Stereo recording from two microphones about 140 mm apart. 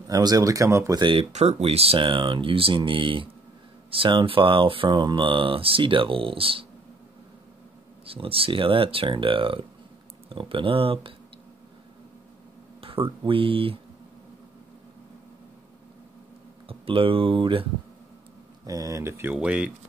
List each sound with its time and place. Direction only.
0.1 s speech: 25° right (ahead or behind)
1.3 s speech: 55° right (ahead or behind)
8.0 s speech: 40° right (ahead or behind)
13.2 s speech: 40° right (ahead or behind)
16.6 s speech: 40° right (ahead or behind)
18.7 s speech: 25° right (ahead or behind); by 19.7 s 5° right (ahead or behind)